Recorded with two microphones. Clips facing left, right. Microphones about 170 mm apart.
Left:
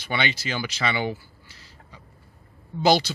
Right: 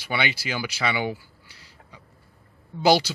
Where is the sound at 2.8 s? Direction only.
10° right (ahead or behind).